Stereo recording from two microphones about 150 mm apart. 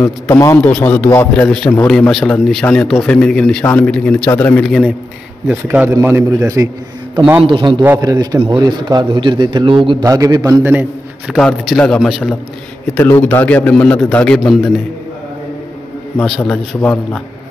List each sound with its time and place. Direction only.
0.0 s a man's voice: 20° left (ahead or behind)
4.6 s a man's voice: centre (ahead or behind); by 6.7 s 20° right (ahead or behind)
7.4 s a man's voice: 35° right (ahead or behind); by 10.9 s 15° right (ahead or behind)
11.2 s a man's voice: 5° left (ahead or behind)
16.3 s a man's voice: centre (ahead or behind)